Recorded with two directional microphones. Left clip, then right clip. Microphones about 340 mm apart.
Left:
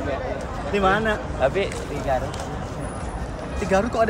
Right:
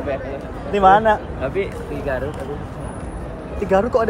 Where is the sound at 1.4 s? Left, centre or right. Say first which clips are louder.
Left 2 dB; left.